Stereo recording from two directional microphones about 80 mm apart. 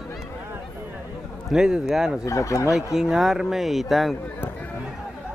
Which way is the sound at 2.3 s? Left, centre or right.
Left.